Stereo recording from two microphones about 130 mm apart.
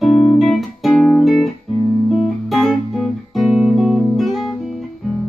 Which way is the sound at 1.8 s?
15° left (ahead or behind).